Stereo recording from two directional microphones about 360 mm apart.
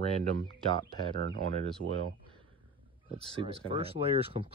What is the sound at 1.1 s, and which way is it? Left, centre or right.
Speech, right.